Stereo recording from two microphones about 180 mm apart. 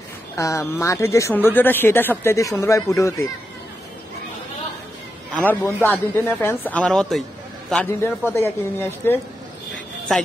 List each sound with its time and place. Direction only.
0.4 s speech: 15° left (ahead or behind)
5.3 s speech: 10° left (ahead or behind)